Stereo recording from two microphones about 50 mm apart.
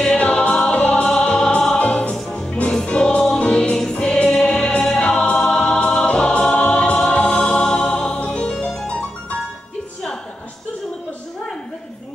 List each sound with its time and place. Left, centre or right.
0.0 s choir: left
0.7 s music: left
1.8 s music: left
3.7 s choir: centre
7.1 s music: left